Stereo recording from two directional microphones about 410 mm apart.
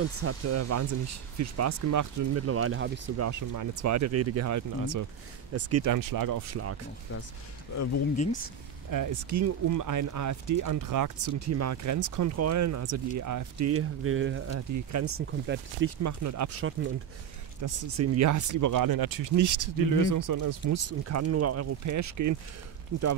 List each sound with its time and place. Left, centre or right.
0.0 s speech: right
3.3 s speech: right
5.5 s speech: right
5.9 s speech: right
7.7 s speech: left
8.9 s speech: right
14.7 s speech: right
16.0 s speech: right
17.6 s speech: right
20.8 s speech: right